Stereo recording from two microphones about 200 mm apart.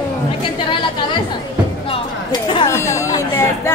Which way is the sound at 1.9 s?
25° left (ahead or behind).